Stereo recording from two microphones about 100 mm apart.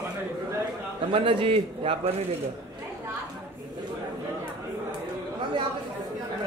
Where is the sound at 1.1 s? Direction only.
65° right (ahead or behind).